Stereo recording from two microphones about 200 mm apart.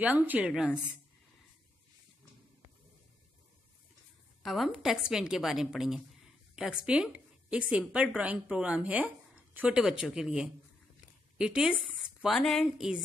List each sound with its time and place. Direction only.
0.0 s a woman's voice: 10° right (ahead or behind)
4.4 s a woman's voice: centre (ahead or behind)